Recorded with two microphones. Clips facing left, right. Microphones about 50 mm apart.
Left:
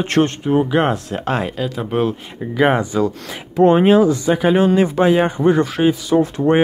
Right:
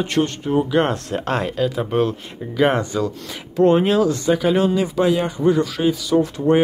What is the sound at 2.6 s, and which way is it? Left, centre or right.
Speech, centre.